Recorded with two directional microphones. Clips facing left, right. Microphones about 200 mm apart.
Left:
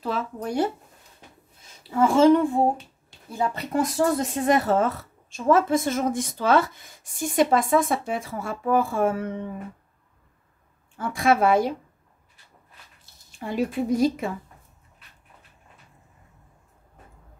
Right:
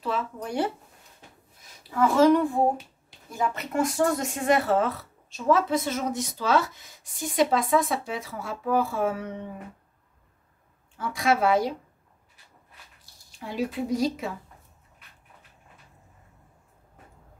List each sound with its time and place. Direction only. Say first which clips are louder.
0.0 s speech: left 2 dB; 40° left (ahead or behind)
1.8 s a child's voice: left 2 dB; 25° left (ahead or behind); by 9.3 s 50° left (ahead or behind)
11.0 s speech: left 3 dB; 50° left (ahead or behind)
13.5 s speech: left 4 dB; 50° left (ahead or behind)